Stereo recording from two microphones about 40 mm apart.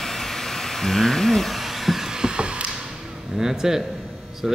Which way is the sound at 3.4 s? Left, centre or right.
Centre.